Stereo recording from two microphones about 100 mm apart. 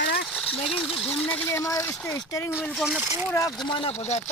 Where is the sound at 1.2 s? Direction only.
15° left (ahead or behind).